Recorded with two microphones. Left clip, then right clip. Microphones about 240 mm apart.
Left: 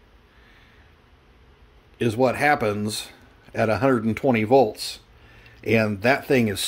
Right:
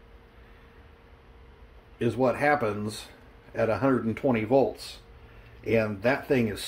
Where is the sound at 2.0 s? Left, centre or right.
Left.